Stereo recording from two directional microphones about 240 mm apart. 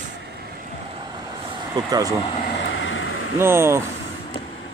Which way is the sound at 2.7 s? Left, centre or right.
Left.